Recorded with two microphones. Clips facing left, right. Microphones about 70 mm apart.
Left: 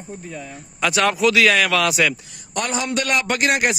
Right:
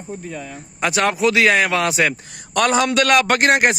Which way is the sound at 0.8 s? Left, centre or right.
Right.